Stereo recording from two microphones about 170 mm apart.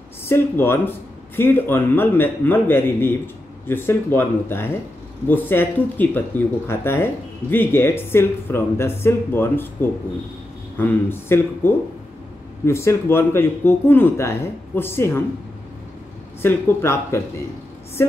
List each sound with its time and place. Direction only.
0.2 s speech: 15° left (ahead or behind)
16.4 s speech: 15° left (ahead or behind)